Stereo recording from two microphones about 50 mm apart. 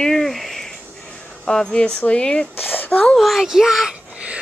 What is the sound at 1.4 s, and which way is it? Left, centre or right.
Speech, centre.